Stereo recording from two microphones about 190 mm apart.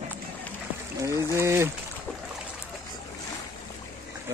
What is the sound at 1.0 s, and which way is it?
Speech, 15° right (ahead or behind).